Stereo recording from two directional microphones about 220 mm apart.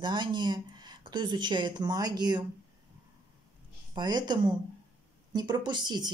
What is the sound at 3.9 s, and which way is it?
Speech, 20° right (ahead or behind).